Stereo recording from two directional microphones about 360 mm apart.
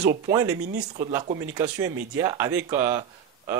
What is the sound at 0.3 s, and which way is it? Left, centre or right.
Speech, centre.